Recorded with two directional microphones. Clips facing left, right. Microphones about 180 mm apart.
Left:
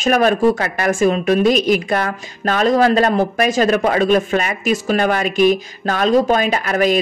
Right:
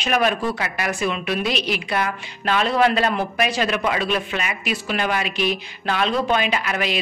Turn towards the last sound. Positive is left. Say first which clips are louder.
# left 8 dB
turn(degrees=45)  # may be behind; listen again after turning